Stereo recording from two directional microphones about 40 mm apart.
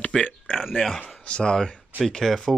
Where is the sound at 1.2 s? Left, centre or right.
Left.